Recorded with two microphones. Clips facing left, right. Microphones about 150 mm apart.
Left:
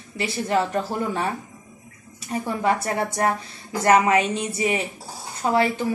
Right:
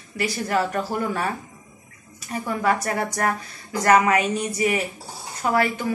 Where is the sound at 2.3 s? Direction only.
25° left (ahead or behind).